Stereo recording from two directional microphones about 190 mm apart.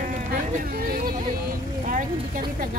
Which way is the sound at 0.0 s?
50° right (ahead or behind).